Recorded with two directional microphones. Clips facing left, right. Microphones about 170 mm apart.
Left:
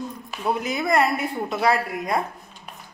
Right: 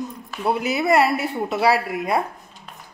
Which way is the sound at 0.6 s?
5° right (ahead or behind).